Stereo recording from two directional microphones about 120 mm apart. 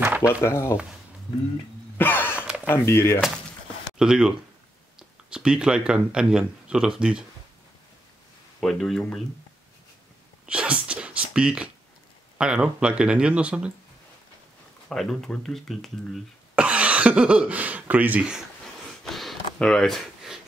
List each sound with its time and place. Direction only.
0.0 s a sound: 15° right (ahead or behind)
0.3 s speech: 20° left (ahead or behind)
2.0 s a sound: 15° left (ahead or behind)
2.7 s speech: 20° left (ahead or behind)
4.0 s speech: 5° right (ahead or behind)
8.5 s speech: 5° left (ahead or behind)
10.4 s a sound: 10° right (ahead or behind)
12.4 s speech: 5° right (ahead or behind)
14.9 s speech: centre (ahead or behind)
16.5 s speech: 10° right (ahead or behind)
19.0 s sniff: centre (ahead or behind)